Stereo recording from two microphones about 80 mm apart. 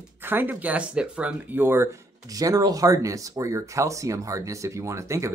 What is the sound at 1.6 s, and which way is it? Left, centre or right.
Speech, right.